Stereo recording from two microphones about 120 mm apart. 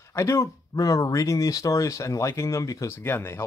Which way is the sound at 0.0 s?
25° left (ahead or behind).